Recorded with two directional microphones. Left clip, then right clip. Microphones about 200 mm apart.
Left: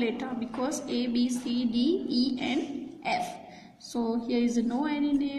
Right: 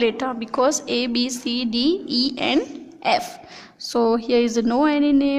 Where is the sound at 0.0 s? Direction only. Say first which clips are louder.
Right 10 dB; 45° right (ahead or behind).